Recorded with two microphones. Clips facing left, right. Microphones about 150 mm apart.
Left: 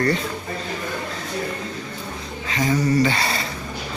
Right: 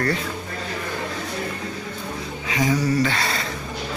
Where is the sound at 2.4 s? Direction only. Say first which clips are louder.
Left 1 dB; 10° right (ahead or behind).